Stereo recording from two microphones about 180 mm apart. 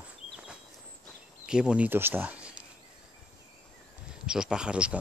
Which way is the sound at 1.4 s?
5° right (ahead or behind).